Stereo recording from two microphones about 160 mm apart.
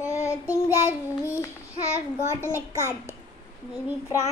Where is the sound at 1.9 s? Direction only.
15° left (ahead or behind).